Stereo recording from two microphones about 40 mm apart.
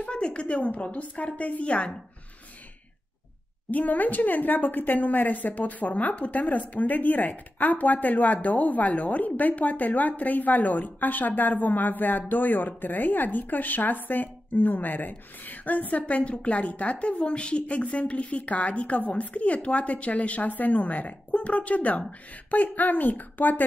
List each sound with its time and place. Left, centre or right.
0.0 s a woman's voice: left
3.7 s a woman's voice: left
21.3 s a woman's voice: left